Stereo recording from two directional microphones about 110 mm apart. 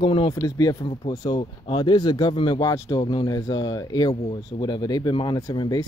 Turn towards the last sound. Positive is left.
turn(degrees=35)  # may be behind; listen again after turning